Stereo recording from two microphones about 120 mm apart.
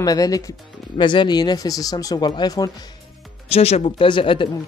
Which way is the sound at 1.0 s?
40° left (ahead or behind).